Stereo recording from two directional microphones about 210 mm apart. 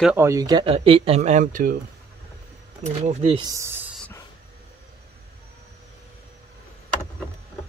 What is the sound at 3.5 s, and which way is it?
Speech, 15° right (ahead or behind).